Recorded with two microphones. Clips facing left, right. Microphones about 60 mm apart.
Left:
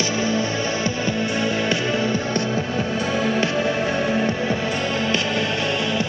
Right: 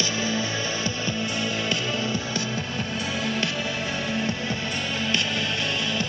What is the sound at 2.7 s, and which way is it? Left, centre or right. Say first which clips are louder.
Music: left 6 dB; centre.